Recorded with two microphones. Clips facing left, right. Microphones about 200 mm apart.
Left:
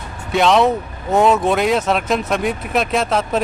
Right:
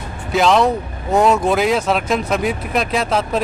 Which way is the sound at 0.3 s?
Centre (ahead or behind).